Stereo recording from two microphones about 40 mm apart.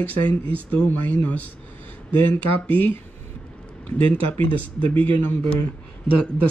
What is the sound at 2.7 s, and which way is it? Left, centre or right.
Speech, left.